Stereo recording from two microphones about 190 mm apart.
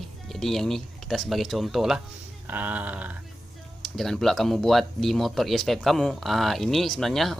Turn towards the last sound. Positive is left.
turn(degrees=0)  # may be behind; listen again after turning